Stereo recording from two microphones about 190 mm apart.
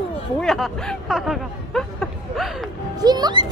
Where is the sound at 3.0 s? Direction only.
20° right (ahead or behind).